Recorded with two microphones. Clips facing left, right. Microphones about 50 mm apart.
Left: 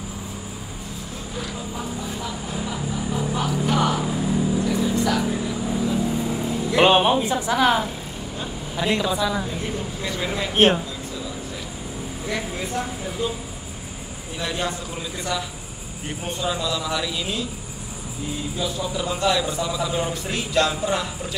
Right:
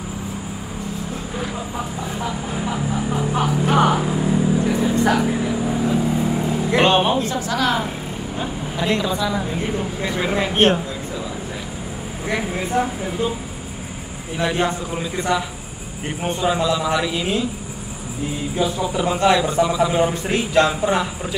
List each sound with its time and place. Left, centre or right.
2.2 s a sound: right
3.6 s vehicle: right
5.1 s a man's voice: right
5.5 s vehicle: right
6.8 s speech: centre
9.5 s a man's voice: right
12.3 s a man's voice: centre
14.4 s a man's voice: right
18.6 s a man's voice: right; by 21.4 s centre